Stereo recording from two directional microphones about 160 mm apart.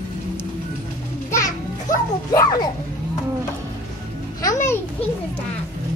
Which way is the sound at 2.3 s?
25° left (ahead or behind).